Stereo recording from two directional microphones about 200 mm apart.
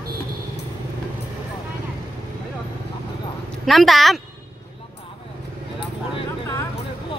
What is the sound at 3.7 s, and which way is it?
Speech, centre (ahead or behind).